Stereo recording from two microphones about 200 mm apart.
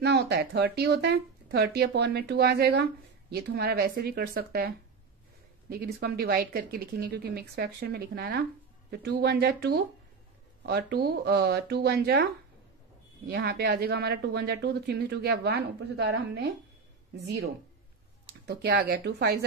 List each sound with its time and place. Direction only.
0.0 s speech: 55° right (ahead or behind)
13.3 s a woman's voice: 50° right (ahead or behind)